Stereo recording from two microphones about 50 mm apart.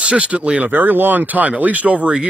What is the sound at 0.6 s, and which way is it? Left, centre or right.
Speech, right.